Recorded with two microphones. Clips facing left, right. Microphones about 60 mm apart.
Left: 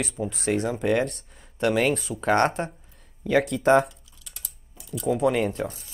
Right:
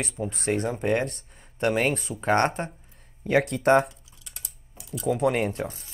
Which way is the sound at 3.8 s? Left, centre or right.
Centre.